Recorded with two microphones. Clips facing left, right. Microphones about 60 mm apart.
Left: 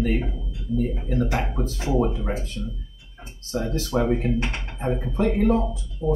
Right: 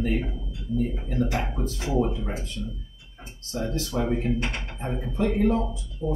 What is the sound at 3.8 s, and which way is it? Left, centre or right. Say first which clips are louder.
Speech: left 4 dB; left.